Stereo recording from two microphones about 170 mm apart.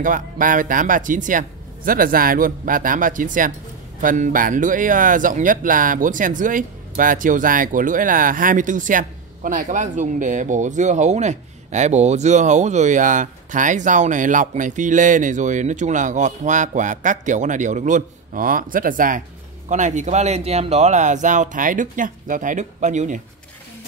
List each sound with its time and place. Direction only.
0.0 s speech: 50° right (ahead or behind)